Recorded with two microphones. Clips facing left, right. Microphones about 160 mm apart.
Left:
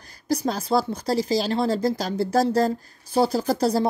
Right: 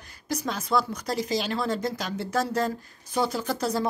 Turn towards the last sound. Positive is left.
turn(degrees=35)  # may be behind; listen again after turning